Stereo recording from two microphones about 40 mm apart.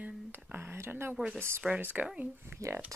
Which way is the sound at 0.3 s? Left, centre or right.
Right.